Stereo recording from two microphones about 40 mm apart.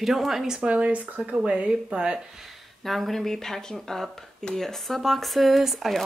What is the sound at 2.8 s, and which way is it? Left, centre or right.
Speech, centre.